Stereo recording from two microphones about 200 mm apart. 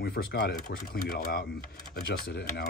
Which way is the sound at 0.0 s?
50° left (ahead or behind).